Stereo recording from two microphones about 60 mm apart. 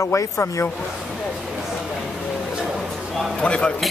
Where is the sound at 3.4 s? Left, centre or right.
Centre.